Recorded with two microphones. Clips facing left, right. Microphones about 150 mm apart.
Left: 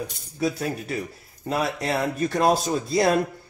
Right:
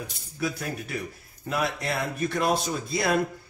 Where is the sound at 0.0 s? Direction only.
30° left (ahead or behind).